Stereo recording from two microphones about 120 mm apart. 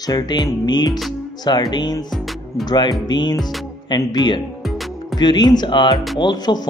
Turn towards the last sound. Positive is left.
turn(degrees=35)  # may be behind; listen again after turning